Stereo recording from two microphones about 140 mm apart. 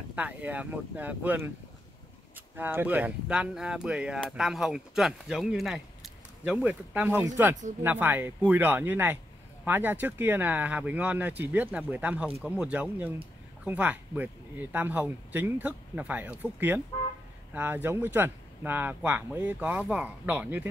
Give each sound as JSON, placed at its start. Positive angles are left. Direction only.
{"t": 0.1, "sound": "speech", "side_deg": -10}